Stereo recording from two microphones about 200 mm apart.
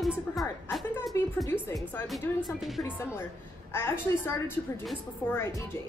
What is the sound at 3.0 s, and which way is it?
A woman's voice, 10° left (ahead or behind).